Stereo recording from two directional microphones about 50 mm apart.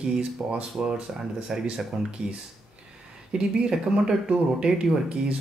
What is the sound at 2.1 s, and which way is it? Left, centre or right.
Speech, right.